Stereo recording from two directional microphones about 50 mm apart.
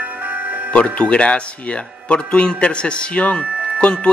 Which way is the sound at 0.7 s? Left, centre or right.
Left.